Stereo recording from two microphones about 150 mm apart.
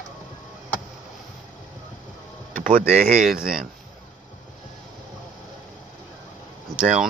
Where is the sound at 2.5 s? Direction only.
65° right (ahead or behind).